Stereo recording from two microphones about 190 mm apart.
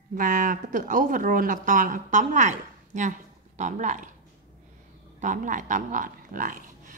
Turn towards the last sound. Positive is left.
turn(degrees=-45)  # may be behind; listen again after turning